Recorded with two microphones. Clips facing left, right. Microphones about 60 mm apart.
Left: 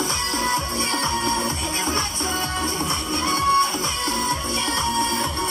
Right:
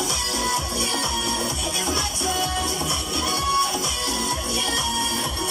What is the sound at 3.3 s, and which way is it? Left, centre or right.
Music, left.